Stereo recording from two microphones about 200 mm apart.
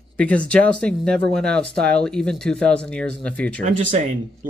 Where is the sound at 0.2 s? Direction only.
5° left (ahead or behind).